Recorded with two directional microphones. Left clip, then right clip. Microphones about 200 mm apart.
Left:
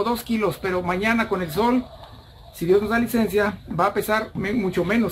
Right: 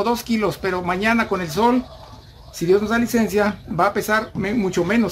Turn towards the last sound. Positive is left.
turn(degrees=-25)  # may be behind; listen again after turning